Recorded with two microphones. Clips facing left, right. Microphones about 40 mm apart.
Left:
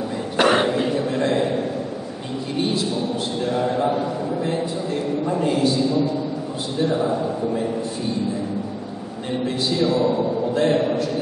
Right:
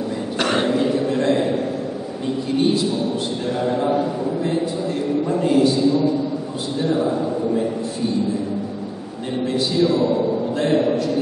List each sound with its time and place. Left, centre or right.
0.4 s throat clearing: centre
2.5 s a man's voice: centre
9.6 s a man's voice: centre